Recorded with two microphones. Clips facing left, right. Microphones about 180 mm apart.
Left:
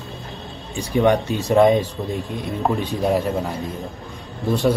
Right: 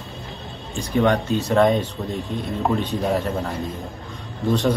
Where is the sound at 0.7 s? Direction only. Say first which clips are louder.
Left 2 dB; 10° left (ahead or behind).